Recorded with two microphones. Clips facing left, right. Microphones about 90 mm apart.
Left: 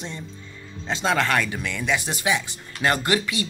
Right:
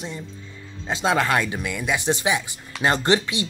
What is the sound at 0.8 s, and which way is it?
Speech, 15° right (ahead or behind).